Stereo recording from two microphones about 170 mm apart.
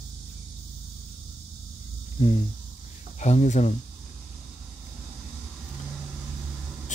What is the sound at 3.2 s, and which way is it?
Speech, 45° left (ahead or behind).